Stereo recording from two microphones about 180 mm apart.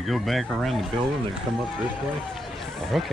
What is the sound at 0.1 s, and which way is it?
Speech, centre (ahead or behind).